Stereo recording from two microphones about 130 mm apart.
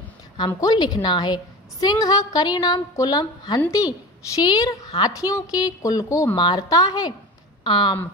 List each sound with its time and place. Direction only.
0.6 s a woman's voice: 30° left (ahead or behind)